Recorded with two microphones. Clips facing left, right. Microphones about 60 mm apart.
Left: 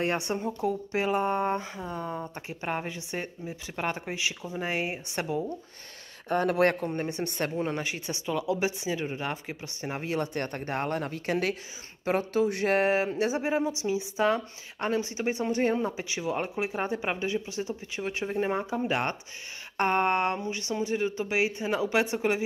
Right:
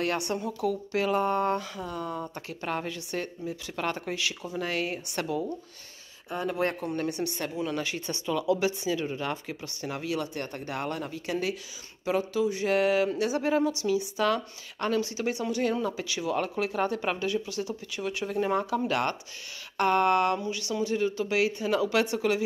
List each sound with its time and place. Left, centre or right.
0.0 s speech: left
6.2 s speech: left
6.8 s speech: left
7.2 s speech: left
7.7 s speech: centre; by 12.7 s left
12.7 s speech: left